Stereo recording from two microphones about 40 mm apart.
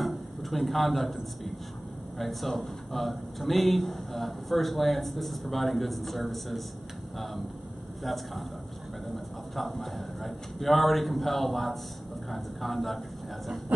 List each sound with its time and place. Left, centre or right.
0.0 s speech: centre
8.0 s speech: centre
13.7 s a sound: right